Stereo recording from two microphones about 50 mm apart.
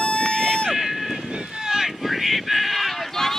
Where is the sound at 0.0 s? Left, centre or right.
Centre.